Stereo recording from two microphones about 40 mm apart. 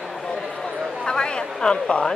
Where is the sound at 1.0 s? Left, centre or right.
Left.